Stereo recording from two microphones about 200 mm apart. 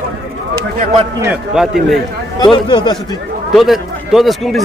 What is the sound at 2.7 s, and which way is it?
Speech, 20° left (ahead or behind).